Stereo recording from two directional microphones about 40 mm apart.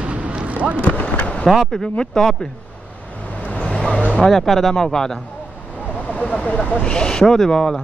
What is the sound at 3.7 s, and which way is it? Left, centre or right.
Vehicle, centre.